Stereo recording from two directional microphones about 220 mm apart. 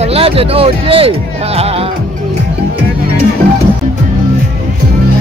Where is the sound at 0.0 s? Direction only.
25° right (ahead or behind).